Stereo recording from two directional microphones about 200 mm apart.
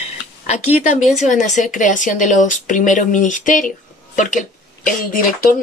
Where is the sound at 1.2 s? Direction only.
40° left (ahead or behind).